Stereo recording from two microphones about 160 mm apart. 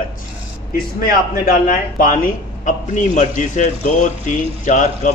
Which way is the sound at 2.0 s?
60° left (ahead or behind).